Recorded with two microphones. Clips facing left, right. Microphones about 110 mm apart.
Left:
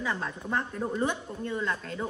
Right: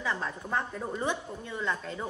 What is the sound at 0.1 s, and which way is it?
A woman's voice, 5° left (ahead or behind).